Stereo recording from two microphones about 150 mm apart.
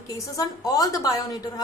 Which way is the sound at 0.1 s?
20° left (ahead or behind).